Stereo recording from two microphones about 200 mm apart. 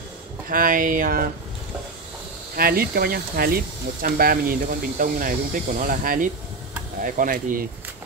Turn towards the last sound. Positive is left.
turn(degrees=-45)  # may be behind; listen again after turning